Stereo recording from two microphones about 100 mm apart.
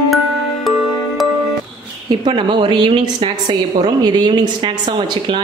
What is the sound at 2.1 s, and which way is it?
A woman's voice, 55° right (ahead or behind).